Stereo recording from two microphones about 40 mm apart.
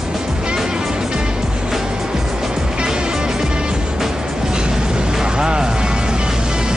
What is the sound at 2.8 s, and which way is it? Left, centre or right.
Music, centre.